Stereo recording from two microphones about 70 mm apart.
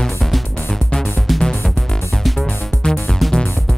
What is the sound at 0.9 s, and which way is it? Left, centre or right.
Music, centre.